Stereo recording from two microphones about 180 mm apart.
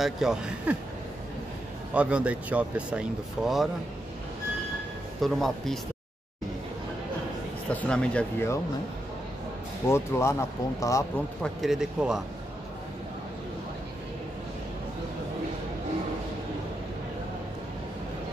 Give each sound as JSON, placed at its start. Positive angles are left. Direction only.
{"t": 0.0, "sound": "a man's voice", "side_deg": -5}
{"t": 2.0, "sound": "speech", "side_deg": -5}
{"t": 5.2, "sound": "a man's voice", "side_deg": 0}
{"t": 7.7, "sound": "speech", "side_deg": 5}
{"t": 9.8, "sound": "speech", "side_deg": 15}
{"t": 11.4, "sound": "a man's voice", "side_deg": 0}